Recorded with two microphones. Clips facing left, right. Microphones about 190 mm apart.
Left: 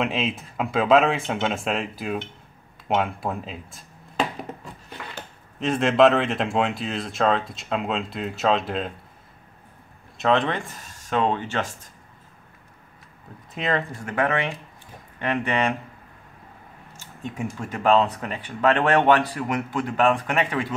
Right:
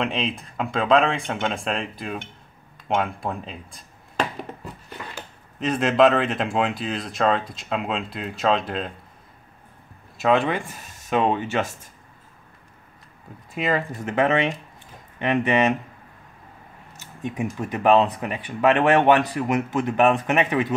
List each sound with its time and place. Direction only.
0.0 s speech: centre (ahead or behind)
5.6 s speech: centre (ahead or behind)
10.1 s speech: 5° right (ahead or behind)
13.6 s speech: 5° right (ahead or behind)
13.9 s speech: 20° right (ahead or behind)
17.2 s speech: 15° right (ahead or behind)